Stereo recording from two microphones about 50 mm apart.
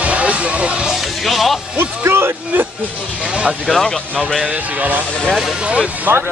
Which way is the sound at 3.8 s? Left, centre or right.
Centre.